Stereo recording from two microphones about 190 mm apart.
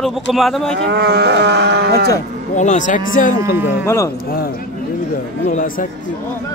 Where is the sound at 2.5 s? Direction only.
40° left (ahead or behind).